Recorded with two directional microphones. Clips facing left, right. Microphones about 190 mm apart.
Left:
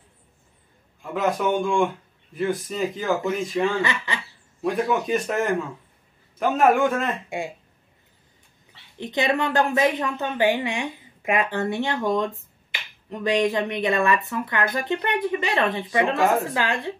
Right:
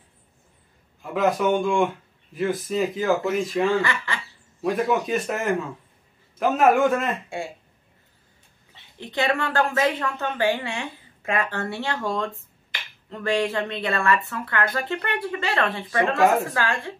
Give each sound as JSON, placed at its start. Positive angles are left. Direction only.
{"t": 1.1, "sound": "speech", "side_deg": 0}
{"t": 3.8, "sound": "speech", "side_deg": 20}
{"t": 4.6, "sound": "speech", "side_deg": 0}
{"t": 7.2, "sound": "speech", "side_deg": 15}
{"t": 8.9, "sound": "a woman's voice", "side_deg": 20}